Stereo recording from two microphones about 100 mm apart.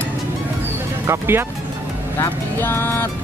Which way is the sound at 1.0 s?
25° right (ahead or behind).